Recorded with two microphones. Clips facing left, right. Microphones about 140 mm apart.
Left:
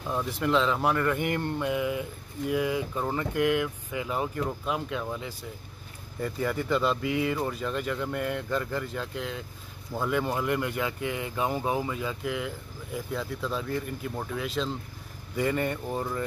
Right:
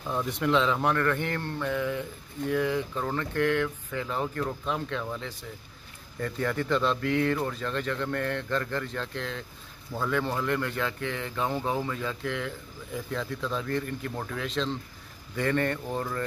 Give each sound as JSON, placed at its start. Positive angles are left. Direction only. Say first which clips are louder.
{"t": 0.1, "sound": "speech", "louder": "even", "side_deg": 5}